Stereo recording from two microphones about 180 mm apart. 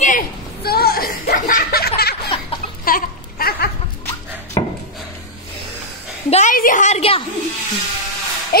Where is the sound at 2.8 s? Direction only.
55° left (ahead or behind).